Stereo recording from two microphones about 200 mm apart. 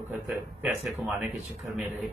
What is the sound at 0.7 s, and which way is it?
Speech, 5° right (ahead or behind).